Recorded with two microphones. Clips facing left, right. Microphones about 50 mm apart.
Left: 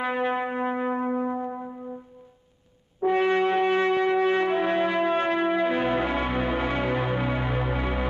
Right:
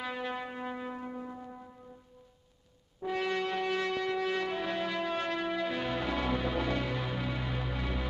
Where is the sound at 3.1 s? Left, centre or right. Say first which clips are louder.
Left 10 dB; left.